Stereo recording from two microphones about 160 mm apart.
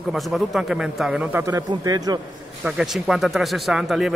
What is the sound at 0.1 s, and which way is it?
Speech, centre (ahead or behind).